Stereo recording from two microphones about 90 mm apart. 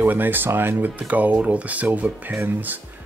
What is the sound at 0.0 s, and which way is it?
Speech, 20° right (ahead or behind).